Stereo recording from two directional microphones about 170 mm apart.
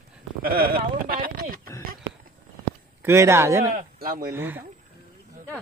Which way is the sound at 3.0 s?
15° right (ahead or behind).